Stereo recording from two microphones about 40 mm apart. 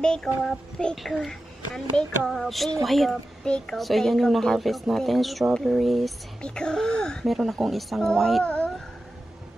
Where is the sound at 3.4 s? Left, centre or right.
Centre.